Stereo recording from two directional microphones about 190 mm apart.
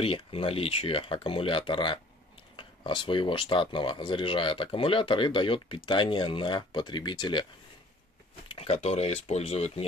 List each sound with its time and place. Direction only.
0.0 s speech: 30° left (ahead or behind)
8.5 s speech: 30° left (ahead or behind)